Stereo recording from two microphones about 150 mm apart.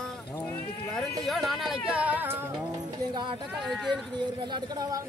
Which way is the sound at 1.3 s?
Centre (ahead or behind).